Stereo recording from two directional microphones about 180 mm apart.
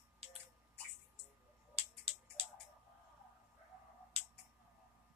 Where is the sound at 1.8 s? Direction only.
35° right (ahead or behind).